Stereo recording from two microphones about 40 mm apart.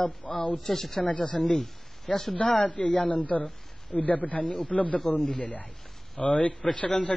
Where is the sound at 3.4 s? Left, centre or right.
Left.